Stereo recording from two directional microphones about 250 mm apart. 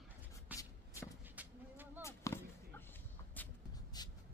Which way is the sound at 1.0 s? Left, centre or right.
Centre.